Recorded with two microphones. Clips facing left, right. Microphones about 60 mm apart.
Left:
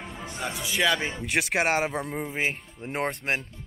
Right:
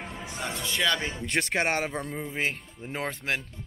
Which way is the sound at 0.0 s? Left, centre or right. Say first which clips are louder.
Left 1 dB; centre.